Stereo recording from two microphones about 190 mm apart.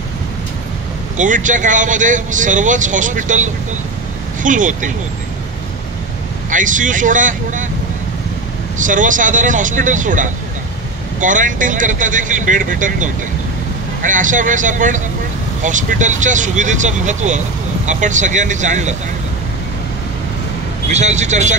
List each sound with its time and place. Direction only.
1.1 s speech: 40° right (ahead or behind)
6.5 s speech: 45° right (ahead or behind)
8.8 s speech: 45° right (ahead or behind)
20.9 s speech: 35° right (ahead or behind)